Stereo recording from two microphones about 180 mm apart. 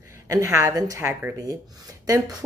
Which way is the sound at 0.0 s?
20° right (ahead or behind).